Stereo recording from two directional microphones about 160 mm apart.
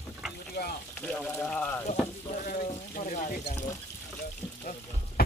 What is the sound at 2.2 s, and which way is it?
Speech, 60° left (ahead or behind).